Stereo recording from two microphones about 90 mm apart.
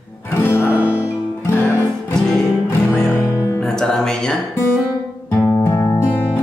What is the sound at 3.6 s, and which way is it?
Music, 5° left (ahead or behind).